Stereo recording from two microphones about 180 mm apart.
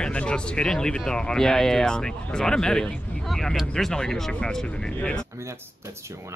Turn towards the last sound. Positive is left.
turn(degrees=-15)  # may be behind; listen again after turning